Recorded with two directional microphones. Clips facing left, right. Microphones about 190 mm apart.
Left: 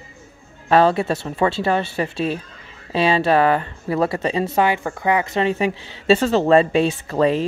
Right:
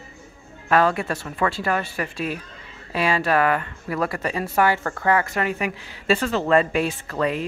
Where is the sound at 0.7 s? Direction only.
30° left (ahead or behind).